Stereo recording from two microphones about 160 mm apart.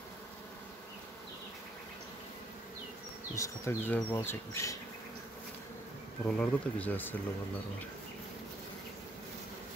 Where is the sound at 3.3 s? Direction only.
20° left (ahead or behind).